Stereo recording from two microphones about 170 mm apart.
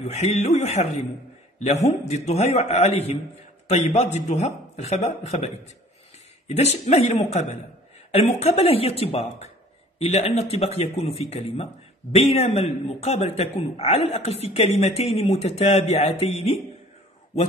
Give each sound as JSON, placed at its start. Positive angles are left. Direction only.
{"t": 0.0, "sound": "speech", "side_deg": 40}
{"t": 6.5, "sound": "speech", "side_deg": 40}